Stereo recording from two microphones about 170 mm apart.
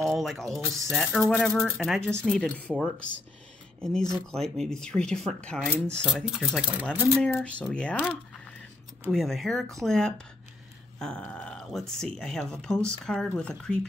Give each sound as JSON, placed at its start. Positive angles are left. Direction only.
{"t": 0.0, "sound": "speech", "side_deg": 0}
{"t": 4.1, "sound": "speech", "side_deg": 0}
{"t": 9.1, "sound": "speech", "side_deg": 0}